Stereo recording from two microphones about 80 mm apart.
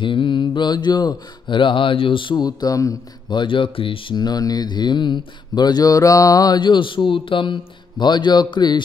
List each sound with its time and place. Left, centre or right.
0.0 s mantra: left
0.6 s speech: left
3.3 s speech: left
6.6 s speech: left